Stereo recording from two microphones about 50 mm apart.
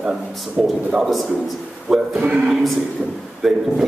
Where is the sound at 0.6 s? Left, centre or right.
Centre.